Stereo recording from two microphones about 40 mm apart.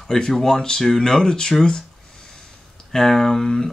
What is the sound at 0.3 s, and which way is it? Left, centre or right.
Speech, centre.